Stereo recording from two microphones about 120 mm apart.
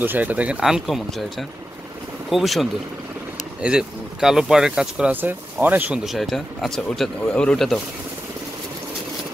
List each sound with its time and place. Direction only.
0.0 s speech: 15° right (ahead or behind)
2.2 s speech: centre (ahead or behind)
6.0 s speech: centre (ahead or behind)